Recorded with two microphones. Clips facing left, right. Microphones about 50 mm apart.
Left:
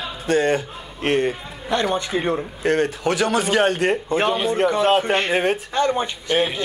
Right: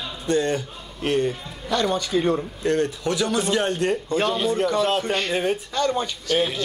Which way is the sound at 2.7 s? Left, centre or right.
Left.